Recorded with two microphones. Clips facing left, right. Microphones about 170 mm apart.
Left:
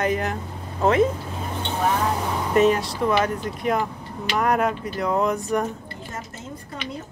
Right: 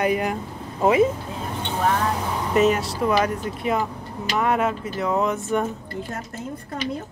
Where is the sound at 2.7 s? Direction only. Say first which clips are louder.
Left 1 dB; 35° left (ahead or behind).